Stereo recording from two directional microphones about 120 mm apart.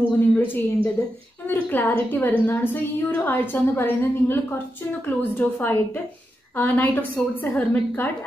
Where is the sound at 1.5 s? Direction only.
15° left (ahead or behind).